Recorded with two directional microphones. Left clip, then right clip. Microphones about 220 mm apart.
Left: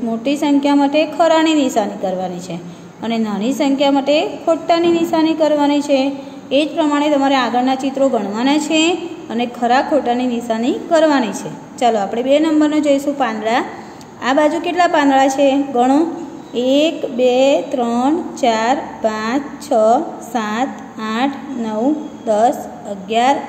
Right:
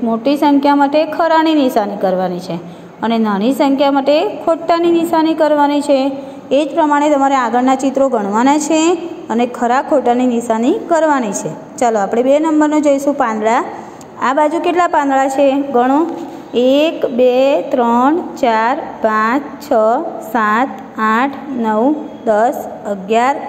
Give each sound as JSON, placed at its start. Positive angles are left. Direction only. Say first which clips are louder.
{"t": 0.1, "sound": "a woman's voice", "louder": "right 4 dB", "side_deg": -15}